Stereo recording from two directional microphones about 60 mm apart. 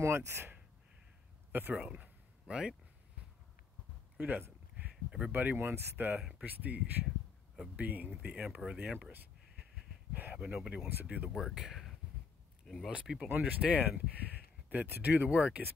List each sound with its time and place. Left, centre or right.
0.0 s speech: right
1.5 s speech: right
1.8 s a sound: centre
4.3 s a sound: right
5.3 s speech: right
6.3 s speech: right
8.9 s speech: right
9.6 s wheeze: centre
10.3 s speech: centre
11.1 s speech: right
12.6 s speech: centre
13.0 s speech: centre
13.3 s speech: right